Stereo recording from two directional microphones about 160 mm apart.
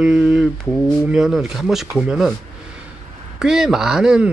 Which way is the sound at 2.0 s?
Centre (ahead or behind).